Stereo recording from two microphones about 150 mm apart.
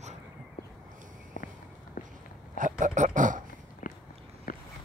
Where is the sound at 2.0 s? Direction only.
65° left (ahead or behind).